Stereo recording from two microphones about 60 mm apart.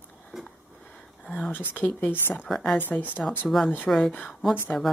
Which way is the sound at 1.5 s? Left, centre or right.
Left.